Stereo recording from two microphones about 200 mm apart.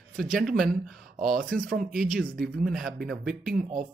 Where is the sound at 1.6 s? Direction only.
45° right (ahead or behind).